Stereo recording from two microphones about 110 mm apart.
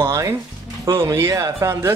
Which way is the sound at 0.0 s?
25° right (ahead or behind).